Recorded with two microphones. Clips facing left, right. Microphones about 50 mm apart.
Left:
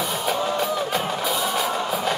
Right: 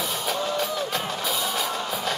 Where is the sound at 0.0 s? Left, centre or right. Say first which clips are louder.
Left 3 dB; centre.